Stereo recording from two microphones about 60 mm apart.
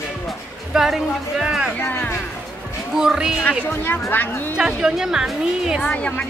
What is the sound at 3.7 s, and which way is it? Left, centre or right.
Speech, left.